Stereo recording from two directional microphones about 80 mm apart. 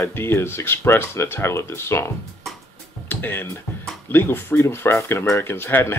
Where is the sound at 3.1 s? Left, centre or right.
Left.